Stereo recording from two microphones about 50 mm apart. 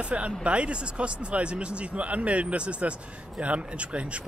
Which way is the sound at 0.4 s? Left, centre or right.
Right.